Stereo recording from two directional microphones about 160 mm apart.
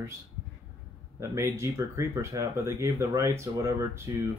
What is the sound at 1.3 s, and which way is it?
Speech, 20° right (ahead or behind).